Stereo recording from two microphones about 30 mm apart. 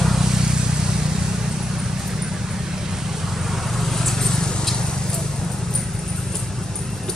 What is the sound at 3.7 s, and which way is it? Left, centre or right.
Vehicle, centre.